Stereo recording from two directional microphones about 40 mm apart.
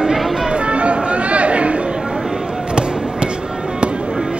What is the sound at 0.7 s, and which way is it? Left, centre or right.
Chatter, right.